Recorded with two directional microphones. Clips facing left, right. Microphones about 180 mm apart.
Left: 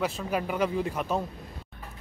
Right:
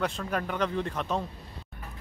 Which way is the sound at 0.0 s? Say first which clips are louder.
Left 1 dB; 10° left (ahead or behind).